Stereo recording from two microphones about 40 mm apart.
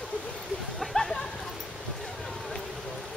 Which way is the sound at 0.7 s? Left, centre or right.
Centre.